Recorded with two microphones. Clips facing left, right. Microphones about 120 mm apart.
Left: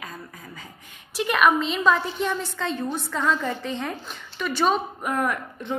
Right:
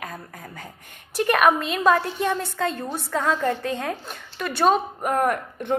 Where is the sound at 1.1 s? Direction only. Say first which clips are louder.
Right 2 dB; 50° right (ahead or behind).